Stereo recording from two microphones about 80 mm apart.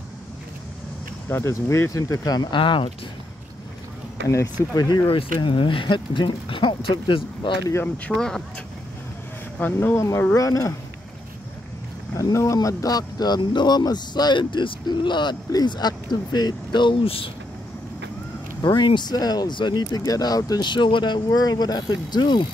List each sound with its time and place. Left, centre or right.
1.3 s speech: left
2.5 s speech: left
4.6 s speech: left
5.1 s speech: left
8.2 s speech: centre
9.6 s speech: left
9.9 s speech: left
12.2 s speech: left
12.6 s speech: left
18.6 s speech: left
20.6 s speech: left